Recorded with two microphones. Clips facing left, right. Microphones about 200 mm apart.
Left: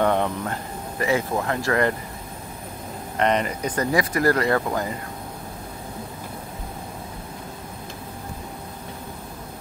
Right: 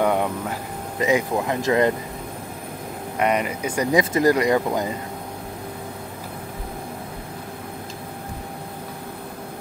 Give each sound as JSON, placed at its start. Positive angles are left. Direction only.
{"t": 0.0, "sound": "speech", "side_deg": -10}
{"t": 3.2, "sound": "speech", "side_deg": -10}